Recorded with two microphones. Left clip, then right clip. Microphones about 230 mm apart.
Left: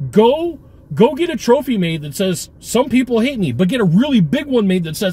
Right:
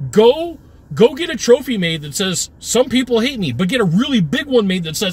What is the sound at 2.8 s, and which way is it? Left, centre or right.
Speech, centre.